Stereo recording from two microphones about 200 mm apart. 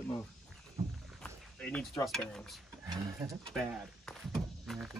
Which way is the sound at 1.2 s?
5° left (ahead or behind).